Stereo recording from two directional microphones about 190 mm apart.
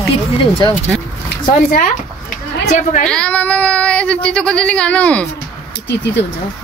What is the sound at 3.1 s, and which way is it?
Child singing, 5° left (ahead or behind).